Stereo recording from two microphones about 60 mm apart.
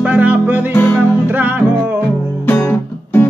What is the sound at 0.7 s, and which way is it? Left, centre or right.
Music, left.